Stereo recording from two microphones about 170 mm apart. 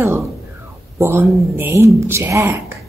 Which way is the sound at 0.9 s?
15° right (ahead or behind).